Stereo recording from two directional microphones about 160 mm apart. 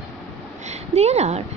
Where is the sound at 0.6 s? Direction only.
45° right (ahead or behind).